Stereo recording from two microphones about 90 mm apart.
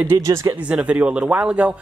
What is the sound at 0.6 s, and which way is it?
Speech, 15° right (ahead or behind).